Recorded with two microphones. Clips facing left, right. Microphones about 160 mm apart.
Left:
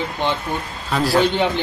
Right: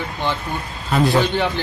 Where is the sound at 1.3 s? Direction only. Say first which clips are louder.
Left 1 dB; 20° left (ahead or behind).